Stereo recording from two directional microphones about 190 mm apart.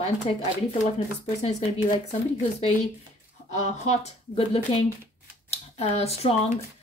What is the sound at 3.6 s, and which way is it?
A woman's voice, 35° left (ahead or behind).